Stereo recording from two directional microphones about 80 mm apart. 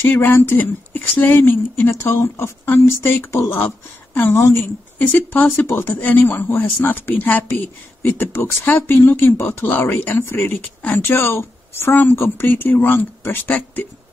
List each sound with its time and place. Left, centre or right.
0.1 s a woman's voice: left
5.7 s speech: left
5.9 s a woman's voice: left